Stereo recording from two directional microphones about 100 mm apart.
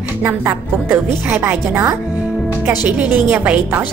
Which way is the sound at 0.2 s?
20° right (ahead or behind).